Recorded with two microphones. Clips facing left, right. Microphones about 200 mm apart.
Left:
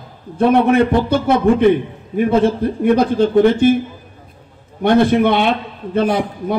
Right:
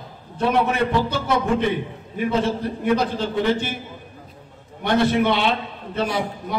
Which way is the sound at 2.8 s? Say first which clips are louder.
Left 8 dB; 50° left (ahead or behind).